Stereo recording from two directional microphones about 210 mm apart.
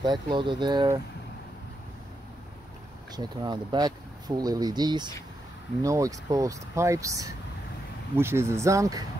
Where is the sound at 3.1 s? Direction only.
20° right (ahead or behind).